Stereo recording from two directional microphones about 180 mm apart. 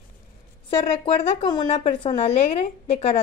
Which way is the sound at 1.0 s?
25° left (ahead or behind).